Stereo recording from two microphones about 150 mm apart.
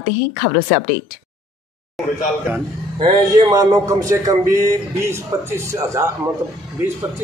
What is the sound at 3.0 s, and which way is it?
A man's voice, 30° right (ahead or behind).